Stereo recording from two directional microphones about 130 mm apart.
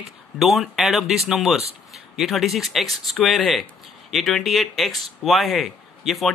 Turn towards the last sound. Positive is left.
turn(degrees=0)  # may be behind; listen again after turning